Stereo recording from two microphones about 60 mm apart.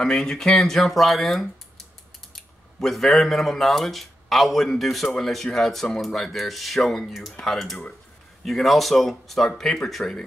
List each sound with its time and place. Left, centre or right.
0.0 s speech: centre